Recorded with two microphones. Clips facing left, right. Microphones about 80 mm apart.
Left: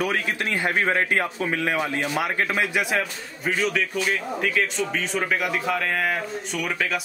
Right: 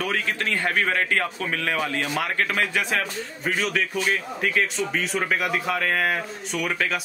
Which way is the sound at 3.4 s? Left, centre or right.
Centre.